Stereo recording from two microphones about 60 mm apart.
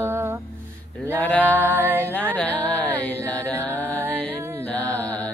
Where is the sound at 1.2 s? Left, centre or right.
Left.